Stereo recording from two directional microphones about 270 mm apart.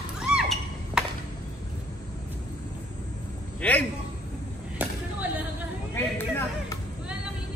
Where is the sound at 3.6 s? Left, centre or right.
Centre.